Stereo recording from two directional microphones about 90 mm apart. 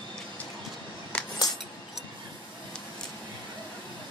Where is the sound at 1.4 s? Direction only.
45° left (ahead or behind).